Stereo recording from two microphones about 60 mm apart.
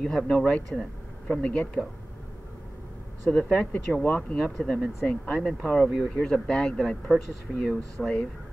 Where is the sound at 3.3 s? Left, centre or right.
Centre.